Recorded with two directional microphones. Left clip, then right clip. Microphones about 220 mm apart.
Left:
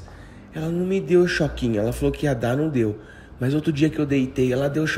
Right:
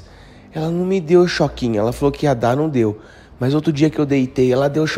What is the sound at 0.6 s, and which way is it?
Speech, 30° right (ahead or behind).